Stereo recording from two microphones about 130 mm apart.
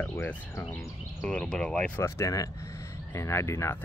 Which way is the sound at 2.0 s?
20° left (ahead or behind).